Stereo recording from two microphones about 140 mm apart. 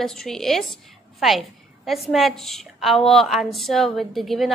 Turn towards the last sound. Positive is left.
turn(degrees=0)  # may be behind; listen again after turning